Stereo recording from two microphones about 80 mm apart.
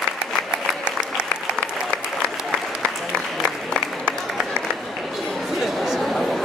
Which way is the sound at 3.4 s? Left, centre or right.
Centre.